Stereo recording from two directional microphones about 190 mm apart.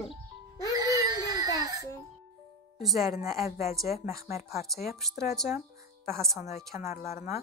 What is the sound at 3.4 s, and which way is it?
Speech, 50° left (ahead or behind).